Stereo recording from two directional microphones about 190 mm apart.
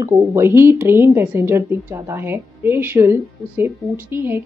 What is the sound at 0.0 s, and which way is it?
A woman's voice, 15° right (ahead or behind).